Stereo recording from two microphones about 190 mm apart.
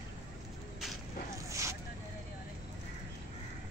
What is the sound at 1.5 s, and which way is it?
Boat, 15° right (ahead or behind).